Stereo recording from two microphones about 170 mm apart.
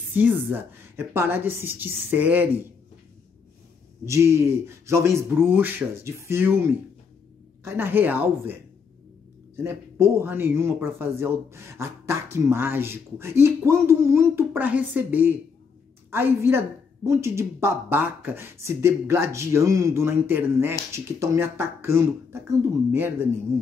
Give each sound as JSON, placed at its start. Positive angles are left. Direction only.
{"t": 0.1, "sound": "speech", "side_deg": -10}
{"t": 4.0, "sound": "speech", "side_deg": -15}
{"t": 9.6, "sound": "speech", "side_deg": -15}